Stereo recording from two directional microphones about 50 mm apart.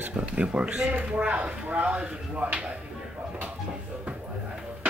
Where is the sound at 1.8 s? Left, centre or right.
Right.